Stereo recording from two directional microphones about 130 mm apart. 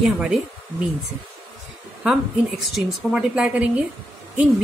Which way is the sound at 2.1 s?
Centre (ahead or behind).